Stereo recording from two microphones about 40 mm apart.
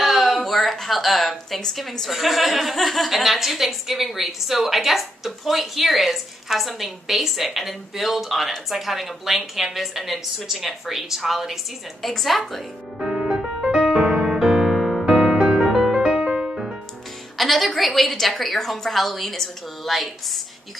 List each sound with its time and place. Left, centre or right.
0.0 s a sound: centre
0.7 s a woman's voice: centre
13.0 s music: centre
16.0 s music: right
17.4 s a woman's voice: centre